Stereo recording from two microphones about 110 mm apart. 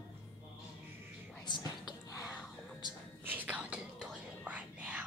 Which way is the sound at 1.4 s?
45° left (ahead or behind).